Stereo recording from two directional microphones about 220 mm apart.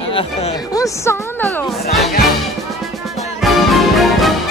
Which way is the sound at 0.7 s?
15° left (ahead or behind).